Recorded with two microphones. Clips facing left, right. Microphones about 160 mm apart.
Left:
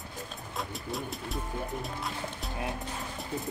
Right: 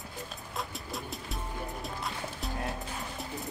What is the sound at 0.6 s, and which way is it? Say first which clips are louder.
Bird: left 3 dB; centre (ahead or behind).